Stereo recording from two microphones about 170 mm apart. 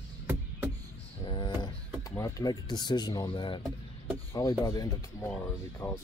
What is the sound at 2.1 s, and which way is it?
Speech, 20° left (ahead or behind).